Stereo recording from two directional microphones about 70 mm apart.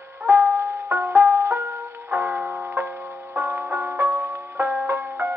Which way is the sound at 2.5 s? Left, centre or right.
Right.